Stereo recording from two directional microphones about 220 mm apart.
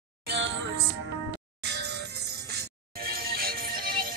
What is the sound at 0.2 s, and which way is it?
Music, 50° right (ahead or behind).